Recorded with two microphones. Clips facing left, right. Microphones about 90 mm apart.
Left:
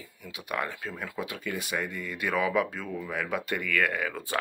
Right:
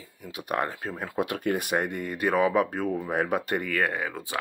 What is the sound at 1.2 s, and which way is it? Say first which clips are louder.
Speech: right 9 dB; 55° right (ahead or behind).